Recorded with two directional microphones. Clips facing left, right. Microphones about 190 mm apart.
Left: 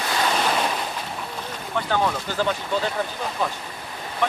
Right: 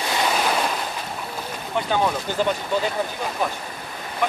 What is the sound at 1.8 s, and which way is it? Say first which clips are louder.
Speech: right 1 dB; 15° right (ahead or behind).